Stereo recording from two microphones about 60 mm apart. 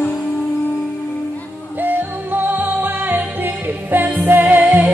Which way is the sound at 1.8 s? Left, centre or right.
Right.